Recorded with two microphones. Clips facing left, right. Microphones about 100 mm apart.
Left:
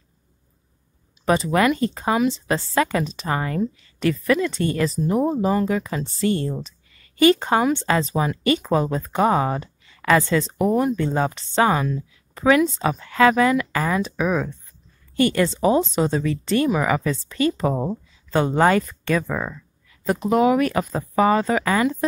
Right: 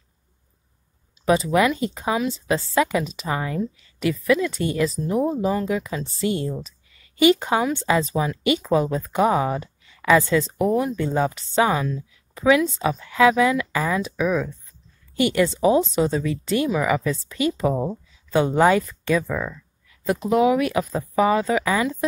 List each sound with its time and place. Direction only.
1.2 s a woman's voice: 5° right (ahead or behind)
8.1 s a woman's voice: 5° left (ahead or behind)
19.2 s speech: 20° left (ahead or behind)
20.1 s speech: centre (ahead or behind)